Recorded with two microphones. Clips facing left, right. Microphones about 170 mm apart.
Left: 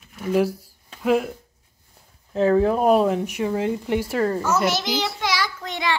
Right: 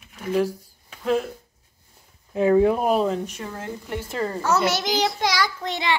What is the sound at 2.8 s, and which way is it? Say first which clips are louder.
Speech: left 4 dB; 5° left (ahead or behind).